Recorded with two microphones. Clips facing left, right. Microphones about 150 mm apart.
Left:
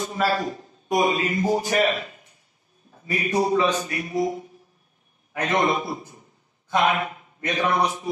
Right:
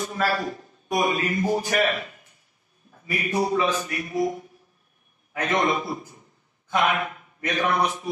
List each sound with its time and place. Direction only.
0.0 s a man's voice: 20° left (ahead or behind)